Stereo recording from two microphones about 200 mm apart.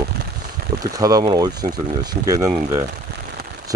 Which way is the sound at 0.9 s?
15° right (ahead or behind).